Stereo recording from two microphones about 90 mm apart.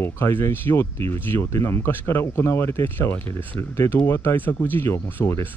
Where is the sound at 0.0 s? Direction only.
25° left (ahead or behind).